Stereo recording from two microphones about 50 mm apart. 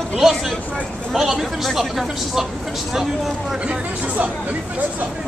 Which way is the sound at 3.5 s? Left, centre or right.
Centre.